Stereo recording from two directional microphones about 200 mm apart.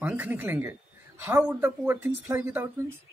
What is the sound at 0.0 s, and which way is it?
Speech, 10° right (ahead or behind).